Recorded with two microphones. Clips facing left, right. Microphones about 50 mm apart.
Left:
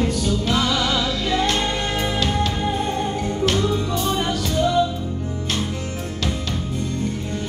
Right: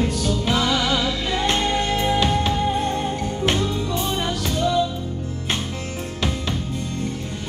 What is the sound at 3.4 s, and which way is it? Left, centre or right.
Music, right.